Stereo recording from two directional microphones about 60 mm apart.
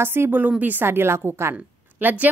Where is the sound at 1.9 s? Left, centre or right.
Right.